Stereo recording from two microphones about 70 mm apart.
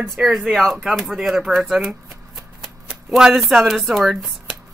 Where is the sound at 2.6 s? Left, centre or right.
Centre.